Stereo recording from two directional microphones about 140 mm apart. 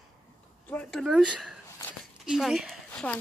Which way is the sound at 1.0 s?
5° right (ahead or behind).